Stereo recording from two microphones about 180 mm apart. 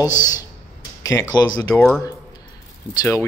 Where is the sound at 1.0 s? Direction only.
15° left (ahead or behind).